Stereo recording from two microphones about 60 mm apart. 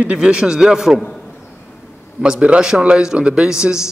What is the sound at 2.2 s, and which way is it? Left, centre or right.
A man's voice, centre.